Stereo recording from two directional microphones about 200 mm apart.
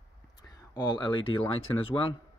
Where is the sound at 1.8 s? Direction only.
25° left (ahead or behind).